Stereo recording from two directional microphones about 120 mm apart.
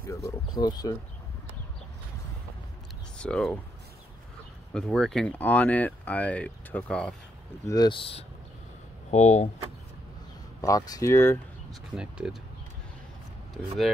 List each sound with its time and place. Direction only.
0.1 s speech: 35° left (ahead or behind)
3.2 s speech: 5° left (ahead or behind)
4.7 s speech: 5° left (ahead or behind)
7.6 s speech: 30° left (ahead or behind)
7.9 s speech: 50° left (ahead or behind)
9.1 s speech: 75° left (ahead or behind)
10.6 s speech: 30° left (ahead or behind)
11.9 s speech: 5° right (ahead or behind)